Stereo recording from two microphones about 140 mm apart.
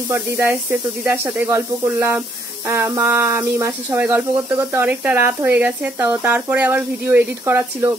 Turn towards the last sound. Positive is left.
turn(degrees=-15)  # may be behind; listen again after turning